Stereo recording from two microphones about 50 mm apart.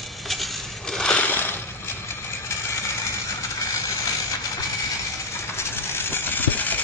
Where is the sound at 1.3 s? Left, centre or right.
Left.